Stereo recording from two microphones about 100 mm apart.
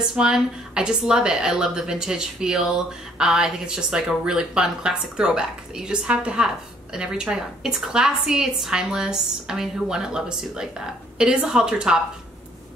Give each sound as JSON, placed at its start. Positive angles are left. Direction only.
{"t": 0.1, "sound": "a woman's voice", "side_deg": -5}